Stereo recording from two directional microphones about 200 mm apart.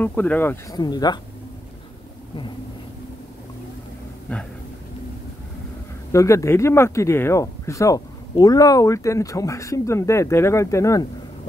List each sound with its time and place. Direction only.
0.0 s speech: 10° left (ahead or behind)
0.7 s speech: 20° left (ahead or behind)
4.3 s speech: 5° left (ahead or behind)
6.1 s speech: 15° left (ahead or behind)